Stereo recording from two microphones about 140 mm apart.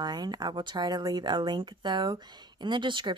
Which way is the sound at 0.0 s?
30° right (ahead or behind).